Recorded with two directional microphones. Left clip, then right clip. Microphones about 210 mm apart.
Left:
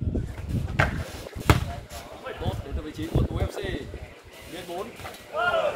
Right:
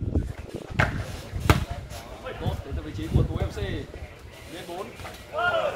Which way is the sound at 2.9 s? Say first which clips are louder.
Even; 55° left (ahead or behind).